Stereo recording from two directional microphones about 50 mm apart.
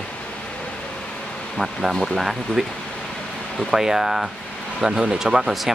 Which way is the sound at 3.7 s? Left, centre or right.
Centre.